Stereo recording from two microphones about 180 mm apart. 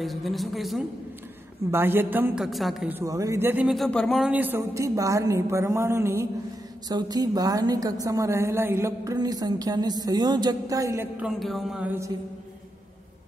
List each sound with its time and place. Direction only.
0.0 s a man's voice: centre (ahead or behind)
1.7 s a woman's voice: 10° right (ahead or behind)
3.0 s a woman's voice: 20° right (ahead or behind)
3.6 s a woman's voice: centre (ahead or behind)